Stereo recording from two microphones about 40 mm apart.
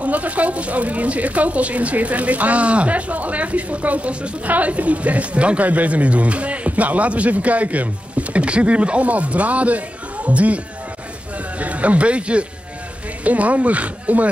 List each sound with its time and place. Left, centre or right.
0.0 s speech: right